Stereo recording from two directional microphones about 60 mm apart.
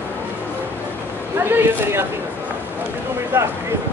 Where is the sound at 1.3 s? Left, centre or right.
Right.